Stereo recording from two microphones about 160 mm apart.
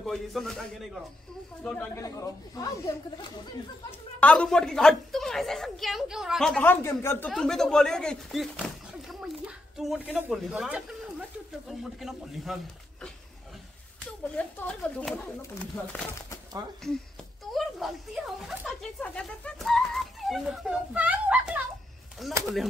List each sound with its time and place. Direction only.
0.0 s a woman's voice: centre (ahead or behind)
2.0 s speech: 20° left (ahead or behind)
4.2 s a woman's voice: 5° left (ahead or behind)
6.6 s speech: 15° left (ahead or behind)
7.3 s speech: 5° left (ahead or behind)
14.2 s a woman's voice: 5° left (ahead or behind)
17.6 s a sound: centre (ahead or behind)
22.2 s a woman's voice: centre (ahead or behind)